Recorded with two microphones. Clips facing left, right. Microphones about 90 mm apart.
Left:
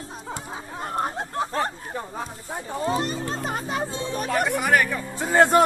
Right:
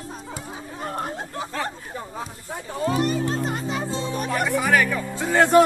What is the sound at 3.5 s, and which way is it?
Music, 50° left (ahead or behind).